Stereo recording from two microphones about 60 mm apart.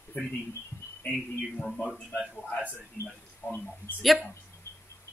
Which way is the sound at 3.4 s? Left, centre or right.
Left.